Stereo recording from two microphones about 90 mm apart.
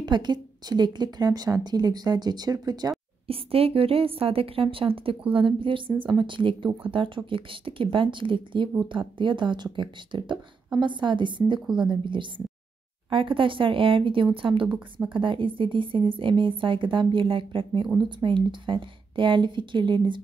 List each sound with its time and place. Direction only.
0.0 s a woman's voice: 55° right (ahead or behind)
3.3 s a woman's voice: 90° right
5.3 s a woman's voice: 80° right
5.9 s a woman's voice: 60° right (ahead or behind)